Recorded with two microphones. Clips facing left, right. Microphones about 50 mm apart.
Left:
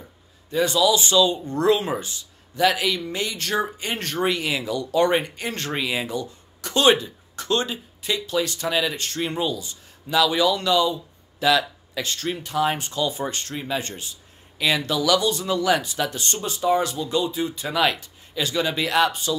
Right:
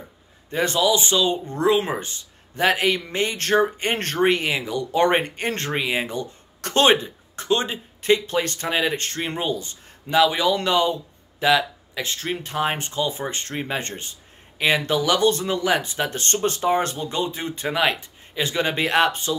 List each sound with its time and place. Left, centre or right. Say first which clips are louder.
0.5 s speech: left 1 dB; right
5.7 s speech: even; right
5.9 s speech: right 1 dB; right
11.4 s speech: right 1 dB; right
12.4 s speech: left 2 dB; right
16.6 s speech: left 4 dB; right
17.6 s speech: right 2 dB; right